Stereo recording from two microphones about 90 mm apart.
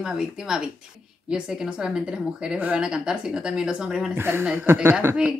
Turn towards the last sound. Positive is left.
turn(degrees=-25)  # may be behind; listen again after turning